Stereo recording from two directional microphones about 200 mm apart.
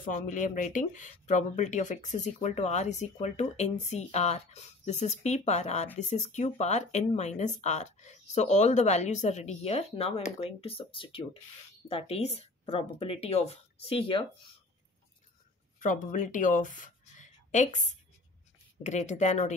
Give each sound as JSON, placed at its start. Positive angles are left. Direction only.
{"t": 0.0, "sound": "speech", "side_deg": 40}
{"t": 15.8, "sound": "a woman's voice", "side_deg": 40}